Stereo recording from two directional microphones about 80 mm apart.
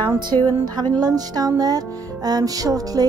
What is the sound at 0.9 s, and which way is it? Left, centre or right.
Music, right.